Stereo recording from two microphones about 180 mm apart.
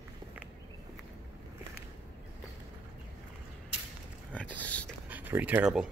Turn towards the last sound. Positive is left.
turn(degrees=-5)  # may be behind; listen again after turning